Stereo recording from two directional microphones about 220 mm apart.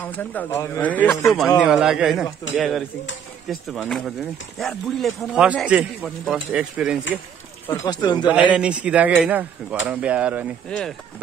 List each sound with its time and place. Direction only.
0.0 s speech: 10° left (ahead or behind)
7.6 s speech: 15° left (ahead or behind)
8.3 s speech: 5° right (ahead or behind)